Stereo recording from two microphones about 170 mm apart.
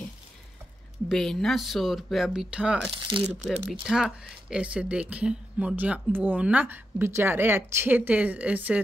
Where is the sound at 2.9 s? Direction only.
30° right (ahead or behind).